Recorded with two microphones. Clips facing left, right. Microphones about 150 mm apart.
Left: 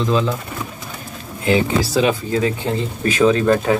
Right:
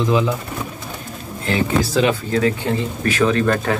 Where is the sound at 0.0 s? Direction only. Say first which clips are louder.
Right 1 dB; 15° right (ahead or behind).